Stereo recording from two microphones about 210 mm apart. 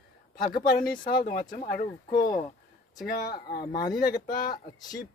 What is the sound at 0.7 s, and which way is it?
Speech, 45° left (ahead or behind).